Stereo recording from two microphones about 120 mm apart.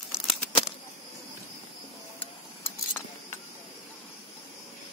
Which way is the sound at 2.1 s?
15° left (ahead or behind).